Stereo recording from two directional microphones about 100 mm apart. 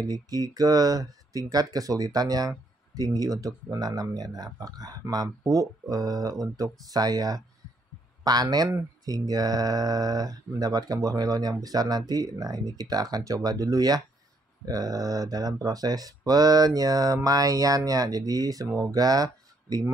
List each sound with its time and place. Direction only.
0.0 s speech: 40° right (ahead or behind)